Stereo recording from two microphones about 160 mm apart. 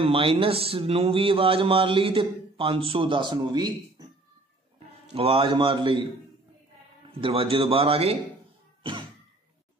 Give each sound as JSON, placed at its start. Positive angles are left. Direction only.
{"t": 0.0, "sound": "a man's voice", "side_deg": -35}
{"t": 5.1, "sound": "a man's voice", "side_deg": -35}
{"t": 7.2, "sound": "a man's voice", "side_deg": -35}